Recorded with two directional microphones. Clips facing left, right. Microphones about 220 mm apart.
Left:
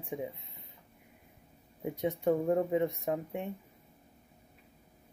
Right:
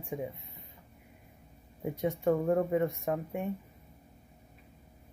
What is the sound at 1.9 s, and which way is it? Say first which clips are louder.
Speech: right 1 dB; 20° left (ahead or behind).